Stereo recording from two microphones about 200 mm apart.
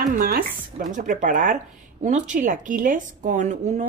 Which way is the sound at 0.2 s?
45° right (ahead or behind).